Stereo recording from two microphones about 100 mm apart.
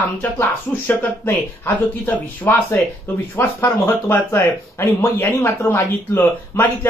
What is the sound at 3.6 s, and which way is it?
Speech, 20° left (ahead or behind).